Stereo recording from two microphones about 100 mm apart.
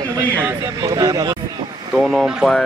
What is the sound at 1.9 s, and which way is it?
Speech, 5° right (ahead or behind).